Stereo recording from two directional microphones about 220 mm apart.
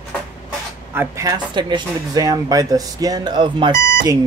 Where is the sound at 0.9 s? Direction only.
15° right (ahead or behind).